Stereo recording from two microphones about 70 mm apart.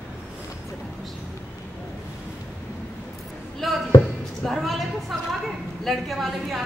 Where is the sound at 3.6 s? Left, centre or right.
Centre.